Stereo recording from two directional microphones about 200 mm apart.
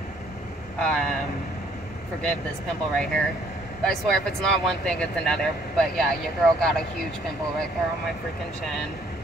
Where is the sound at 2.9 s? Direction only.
Centre (ahead or behind).